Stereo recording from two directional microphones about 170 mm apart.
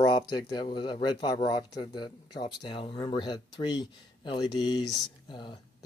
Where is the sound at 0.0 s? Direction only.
25° left (ahead or behind).